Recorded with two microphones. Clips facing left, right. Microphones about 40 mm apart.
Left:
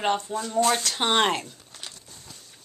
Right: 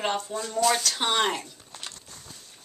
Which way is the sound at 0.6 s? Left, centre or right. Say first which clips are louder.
Left 1 dB; left.